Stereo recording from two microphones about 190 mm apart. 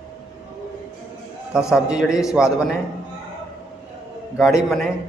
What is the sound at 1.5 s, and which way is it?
Speech, 5° right (ahead or behind).